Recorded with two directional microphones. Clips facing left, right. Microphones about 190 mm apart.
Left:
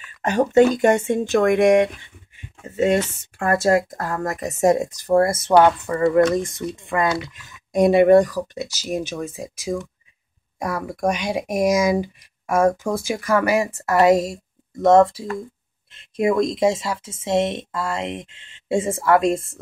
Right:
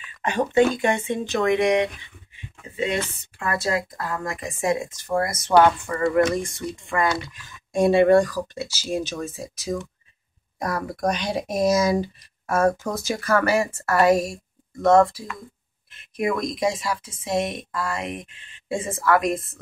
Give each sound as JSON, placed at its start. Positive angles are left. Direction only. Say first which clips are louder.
{"t": 0.2, "sound": "speech", "louder": "left 4 dB", "side_deg": 45}